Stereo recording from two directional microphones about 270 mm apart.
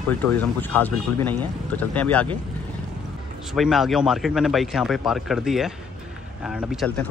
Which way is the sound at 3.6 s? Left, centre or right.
Centre.